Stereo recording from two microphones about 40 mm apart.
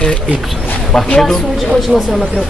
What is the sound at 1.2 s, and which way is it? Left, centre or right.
Speech, centre.